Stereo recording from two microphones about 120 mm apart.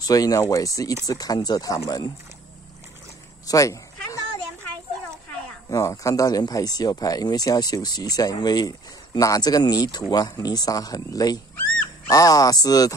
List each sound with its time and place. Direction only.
0.0 s speech: 30° left (ahead or behind)
3.4 s cat: 25° left (ahead or behind)
5.7 s speech: 25° left (ahead or behind)